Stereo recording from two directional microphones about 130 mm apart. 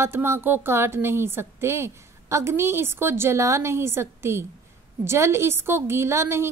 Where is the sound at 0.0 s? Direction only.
20° right (ahead or behind).